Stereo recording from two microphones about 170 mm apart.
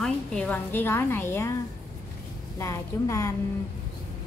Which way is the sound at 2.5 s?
15° left (ahead or behind).